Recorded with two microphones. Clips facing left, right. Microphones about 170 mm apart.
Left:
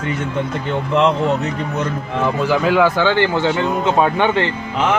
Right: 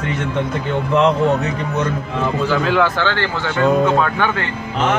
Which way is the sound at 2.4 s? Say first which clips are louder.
Left 2 dB; 10° left (ahead or behind).